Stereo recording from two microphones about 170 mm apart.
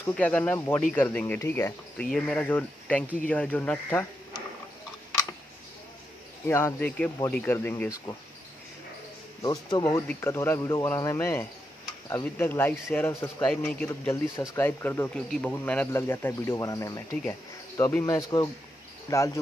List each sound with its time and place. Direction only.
0.1 s speech: 10° left (ahead or behind)
6.4 s speech: 15° left (ahead or behind)
9.4 s speech: 20° left (ahead or behind)
18.0 s speech: 20° left (ahead or behind)